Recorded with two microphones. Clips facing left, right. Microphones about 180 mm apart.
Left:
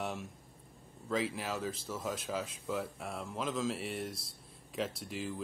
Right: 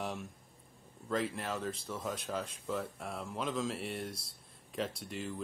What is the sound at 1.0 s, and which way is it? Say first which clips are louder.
Speech: even; centre (ahead or behind).